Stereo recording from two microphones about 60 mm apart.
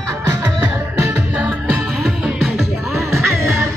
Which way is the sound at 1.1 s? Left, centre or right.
Right.